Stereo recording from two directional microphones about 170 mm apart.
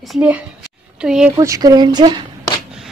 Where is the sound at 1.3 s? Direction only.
20° right (ahead or behind).